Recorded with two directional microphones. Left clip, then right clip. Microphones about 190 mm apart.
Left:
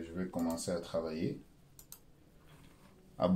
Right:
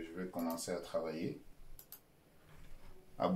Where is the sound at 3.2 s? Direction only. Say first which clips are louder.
Left 3 dB; 20° left (ahead or behind).